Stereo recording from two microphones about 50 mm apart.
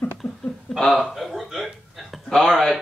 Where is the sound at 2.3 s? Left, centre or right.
Centre.